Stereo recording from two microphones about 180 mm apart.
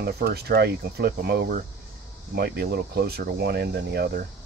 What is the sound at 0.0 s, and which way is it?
Speech, 65° right (ahead or behind).